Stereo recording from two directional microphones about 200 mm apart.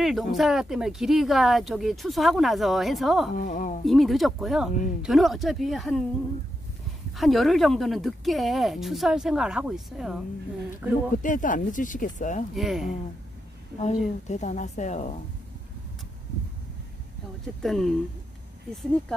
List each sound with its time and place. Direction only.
0.0 s speech: centre (ahead or behind)
3.3 s a woman's voice: 40° left (ahead or behind)
3.8 s speech: centre (ahead or behind)
7.2 s speech: centre (ahead or behind)
11.2 s a woman's voice: 40° left (ahead or behind)
12.5 s speech: centre (ahead or behind)
13.7 s a woman's voice: 35° left (ahead or behind)
17.6 s speech: centre (ahead or behind)